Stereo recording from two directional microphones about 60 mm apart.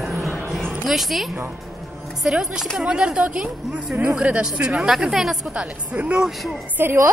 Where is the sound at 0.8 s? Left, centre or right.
Centre.